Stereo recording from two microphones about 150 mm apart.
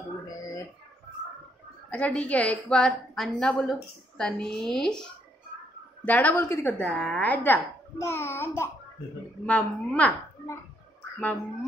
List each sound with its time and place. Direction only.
1.9 s a woman's voice: 10° left (ahead or behind)